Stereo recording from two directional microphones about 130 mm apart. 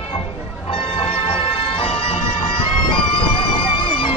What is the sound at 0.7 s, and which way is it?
Music, 50° left (ahead or behind).